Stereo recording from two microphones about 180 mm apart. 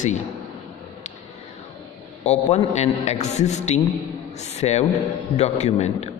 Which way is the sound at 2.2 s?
40° left (ahead or behind).